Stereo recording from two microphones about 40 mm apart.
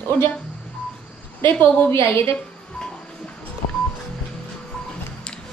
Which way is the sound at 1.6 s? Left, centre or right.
Left.